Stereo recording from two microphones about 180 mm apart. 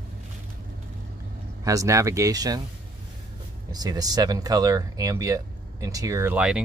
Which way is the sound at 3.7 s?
20° right (ahead or behind).